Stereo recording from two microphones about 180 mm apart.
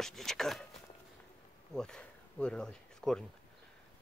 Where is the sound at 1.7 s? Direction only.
5° left (ahead or behind).